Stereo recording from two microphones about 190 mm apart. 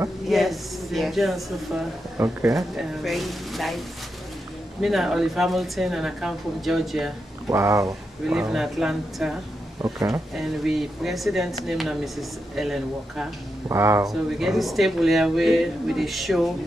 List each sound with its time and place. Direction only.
0.3 s speech: centre (ahead or behind)
2.1 s speech: 15° right (ahead or behind)
2.5 s speech: centre (ahead or behind)
4.8 s speech: centre (ahead or behind)
7.4 s speech: 15° right (ahead or behind)
8.3 s speech: 5° right (ahead or behind)
9.8 s speech: 15° right (ahead or behind)
10.3 s speech: centre (ahead or behind)
13.7 s speech: 15° right (ahead or behind)
14.0 s speech: centre (ahead or behind)